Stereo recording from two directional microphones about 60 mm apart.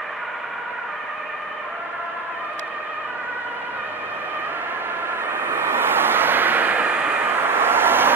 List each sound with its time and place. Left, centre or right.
5.2 s vehicle: right